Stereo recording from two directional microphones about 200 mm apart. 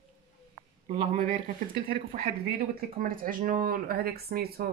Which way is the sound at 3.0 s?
45° right (ahead or behind).